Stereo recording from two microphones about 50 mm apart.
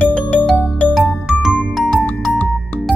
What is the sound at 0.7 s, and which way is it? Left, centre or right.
Music, left.